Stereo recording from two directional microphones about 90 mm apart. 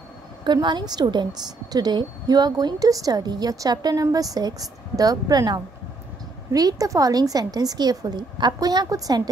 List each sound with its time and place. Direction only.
0.4 s a woman's voice: 55° right (ahead or behind)